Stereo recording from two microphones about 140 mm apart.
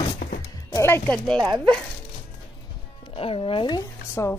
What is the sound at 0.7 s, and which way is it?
Speech, 15° left (ahead or behind).